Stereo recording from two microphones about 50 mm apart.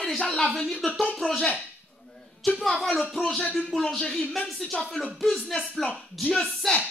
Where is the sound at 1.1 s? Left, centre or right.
Centre.